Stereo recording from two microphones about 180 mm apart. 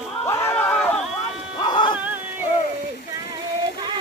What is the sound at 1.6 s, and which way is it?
Music, 25° left (ahead or behind).